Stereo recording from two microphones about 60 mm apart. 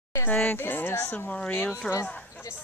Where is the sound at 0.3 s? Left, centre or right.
Left.